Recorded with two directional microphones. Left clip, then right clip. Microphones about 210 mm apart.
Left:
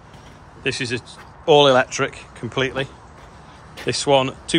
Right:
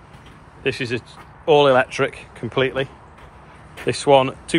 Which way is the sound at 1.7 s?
5° left (ahead or behind).